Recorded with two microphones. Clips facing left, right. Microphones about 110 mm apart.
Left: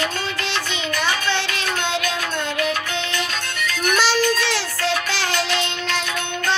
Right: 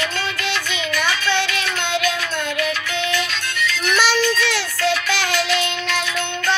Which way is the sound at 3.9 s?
30° left (ahead or behind).